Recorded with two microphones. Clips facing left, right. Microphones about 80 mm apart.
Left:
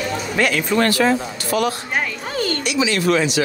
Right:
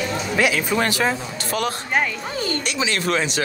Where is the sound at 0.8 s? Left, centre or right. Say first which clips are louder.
Left 6 dB; centre.